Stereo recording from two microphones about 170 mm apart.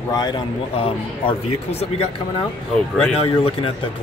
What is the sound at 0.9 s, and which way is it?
Speech, 35° left (ahead or behind).